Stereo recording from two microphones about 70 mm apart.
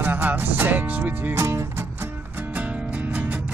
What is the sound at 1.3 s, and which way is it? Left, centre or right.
Music, right.